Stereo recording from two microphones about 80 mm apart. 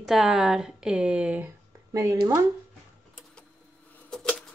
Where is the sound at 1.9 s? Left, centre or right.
Right.